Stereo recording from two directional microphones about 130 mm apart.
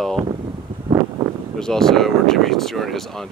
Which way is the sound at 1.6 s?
5° left (ahead or behind).